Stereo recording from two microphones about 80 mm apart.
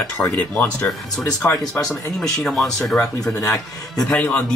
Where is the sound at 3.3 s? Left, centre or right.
Left.